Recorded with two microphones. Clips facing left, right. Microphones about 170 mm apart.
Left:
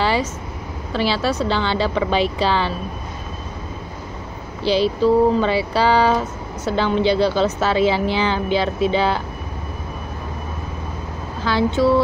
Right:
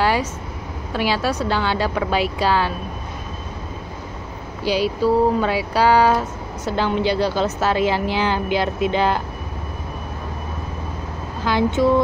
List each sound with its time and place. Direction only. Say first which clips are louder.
0.0 s vehicle: even; 10° right (ahead or behind)
0.9 s speech: left 1 dB; 10° right (ahead or behind)
4.6 s speech: left 2 dB; 10° right (ahead or behind)
11.4 s speech: even; 15° right (ahead or behind)